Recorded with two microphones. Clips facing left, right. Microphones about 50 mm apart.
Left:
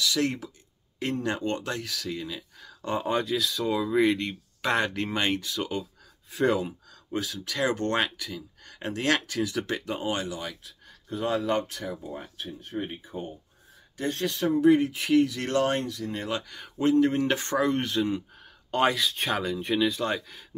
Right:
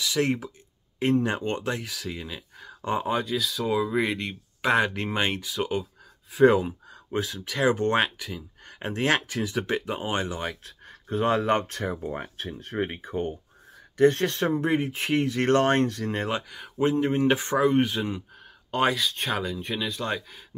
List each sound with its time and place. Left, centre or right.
0.0 s speech: right
3.1 s speech: centre; by 10.3 s right
10.3 s speech: right
13.9 s speech: right
16.4 s speech: centre
16.7 s speech: right; by 20.4 s centre